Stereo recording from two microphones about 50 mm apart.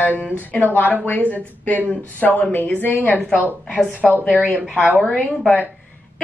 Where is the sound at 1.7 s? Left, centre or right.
Left.